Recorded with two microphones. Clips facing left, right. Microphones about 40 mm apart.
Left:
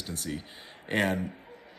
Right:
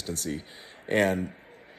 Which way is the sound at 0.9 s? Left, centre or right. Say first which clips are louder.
Right 3 dB; left.